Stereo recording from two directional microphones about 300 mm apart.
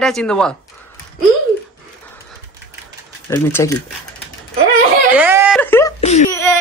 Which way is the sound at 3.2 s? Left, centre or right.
Centre.